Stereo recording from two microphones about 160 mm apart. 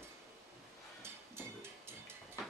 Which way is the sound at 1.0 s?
15° right (ahead or behind).